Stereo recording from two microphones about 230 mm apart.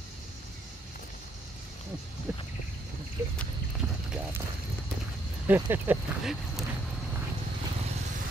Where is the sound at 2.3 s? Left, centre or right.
Centre.